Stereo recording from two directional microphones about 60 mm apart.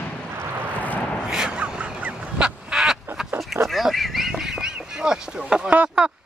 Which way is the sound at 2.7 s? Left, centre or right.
Centre.